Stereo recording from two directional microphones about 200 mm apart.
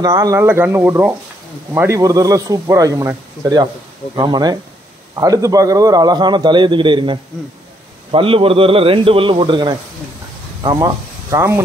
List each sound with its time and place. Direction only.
0.0 s a man's voice: 20° right (ahead or behind)